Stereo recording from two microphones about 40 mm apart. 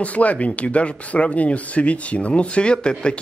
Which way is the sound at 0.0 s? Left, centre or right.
Left.